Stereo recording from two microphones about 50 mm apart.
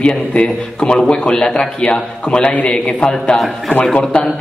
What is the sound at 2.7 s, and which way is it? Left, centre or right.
Speech, left.